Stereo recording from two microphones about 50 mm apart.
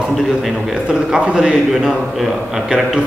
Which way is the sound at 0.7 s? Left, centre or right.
Centre.